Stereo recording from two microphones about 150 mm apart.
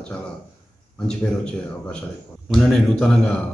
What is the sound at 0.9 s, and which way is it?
A man's voice, 5° left (ahead or behind).